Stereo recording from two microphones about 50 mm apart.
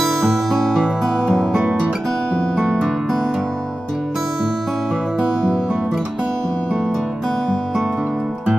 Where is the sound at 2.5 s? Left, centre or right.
Centre.